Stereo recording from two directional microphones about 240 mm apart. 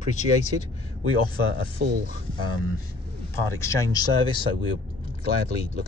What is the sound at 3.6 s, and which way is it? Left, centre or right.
Speech, centre.